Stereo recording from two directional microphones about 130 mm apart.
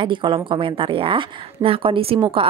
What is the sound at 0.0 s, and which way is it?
A woman's voice, 40° right (ahead or behind).